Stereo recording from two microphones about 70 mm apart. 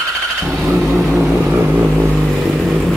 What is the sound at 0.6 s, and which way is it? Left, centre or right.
Vehicle, centre.